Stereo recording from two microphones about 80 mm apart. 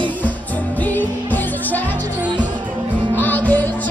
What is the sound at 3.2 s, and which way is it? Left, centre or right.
Music, left.